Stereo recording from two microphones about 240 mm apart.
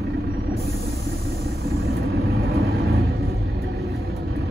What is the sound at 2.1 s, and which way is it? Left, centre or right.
Vehicle, right.